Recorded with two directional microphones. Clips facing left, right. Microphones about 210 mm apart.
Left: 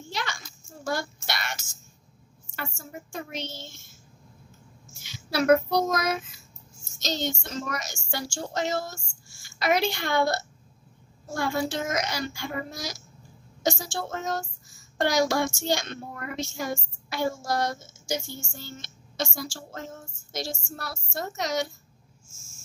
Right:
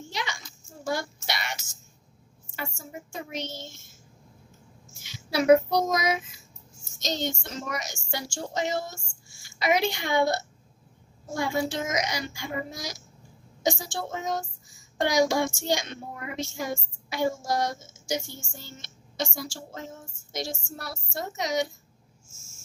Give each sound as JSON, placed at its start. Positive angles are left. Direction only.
{"t": 0.1, "sound": "a sound", "side_deg": -15}
{"t": 2.5, "sound": "child singing", "side_deg": -15}
{"t": 5.3, "sound": "child singing", "side_deg": -15}